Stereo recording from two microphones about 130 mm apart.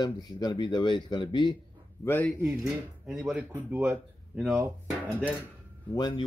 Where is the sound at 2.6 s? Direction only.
5° right (ahead or behind).